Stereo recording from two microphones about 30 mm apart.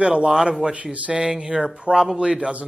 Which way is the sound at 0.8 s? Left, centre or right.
Right.